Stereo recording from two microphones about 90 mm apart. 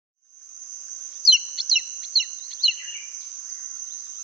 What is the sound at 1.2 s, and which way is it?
Chirp, centre (ahead or behind).